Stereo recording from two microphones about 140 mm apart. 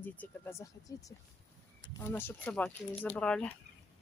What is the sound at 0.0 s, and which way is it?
Speech, 10° left (ahead or behind).